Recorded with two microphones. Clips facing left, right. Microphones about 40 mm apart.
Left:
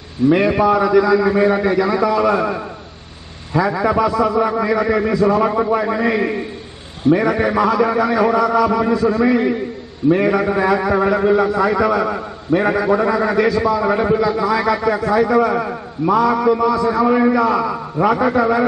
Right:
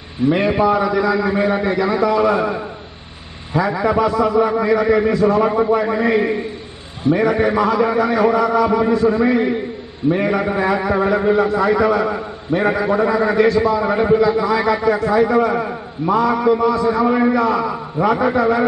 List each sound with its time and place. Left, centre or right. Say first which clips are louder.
0.3 s a man's voice: left 1 dB; centre
5.4 s a man's voice: right 1 dB; centre